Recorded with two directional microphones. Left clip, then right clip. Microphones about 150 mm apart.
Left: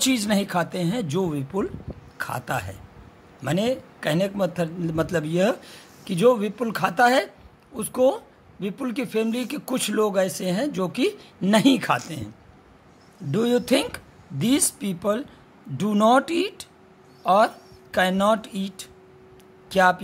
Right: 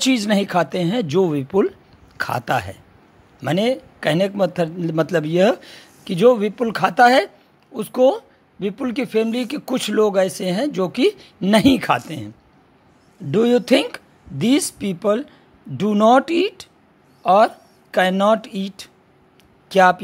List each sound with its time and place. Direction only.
0.0 s a woman's voice: 50° right (ahead or behind)
13.3 s a woman's voice: 45° right (ahead or behind)